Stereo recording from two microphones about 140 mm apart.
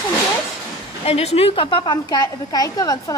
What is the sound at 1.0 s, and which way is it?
A woman's voice, 45° left (ahead or behind).